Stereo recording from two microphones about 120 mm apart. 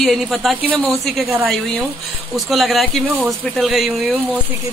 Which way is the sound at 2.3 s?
Centre (ahead or behind).